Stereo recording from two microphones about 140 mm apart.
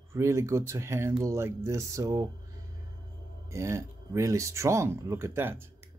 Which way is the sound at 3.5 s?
20° right (ahead or behind).